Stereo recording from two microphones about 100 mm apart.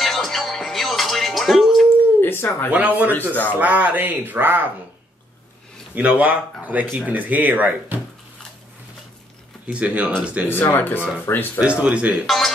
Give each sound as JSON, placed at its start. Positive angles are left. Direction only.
{"t": 0.0, "sound": "music", "side_deg": 0}
{"t": 2.2, "sound": "a sound", "side_deg": 25}
{"t": 2.7, "sound": "speech", "side_deg": -15}
{"t": 5.9, "sound": "speech", "side_deg": -15}
{"t": 9.7, "sound": "speech", "side_deg": -15}
{"t": 10.5, "sound": "speech", "side_deg": 20}
{"t": 11.6, "sound": "speech", "side_deg": -10}